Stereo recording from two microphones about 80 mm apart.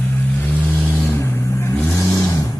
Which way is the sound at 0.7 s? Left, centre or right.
Centre.